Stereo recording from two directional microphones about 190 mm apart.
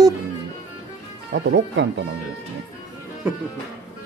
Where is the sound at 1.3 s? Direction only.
70° right (ahead or behind).